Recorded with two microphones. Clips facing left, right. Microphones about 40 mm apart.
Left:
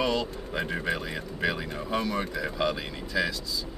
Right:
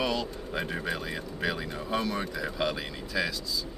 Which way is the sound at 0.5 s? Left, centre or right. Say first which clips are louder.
Left 2 dB; centre.